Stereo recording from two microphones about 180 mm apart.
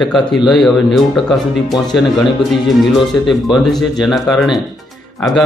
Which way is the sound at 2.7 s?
Centre (ahead or behind).